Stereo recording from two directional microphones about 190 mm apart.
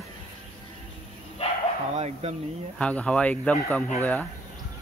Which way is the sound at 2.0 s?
35° right (ahead or behind).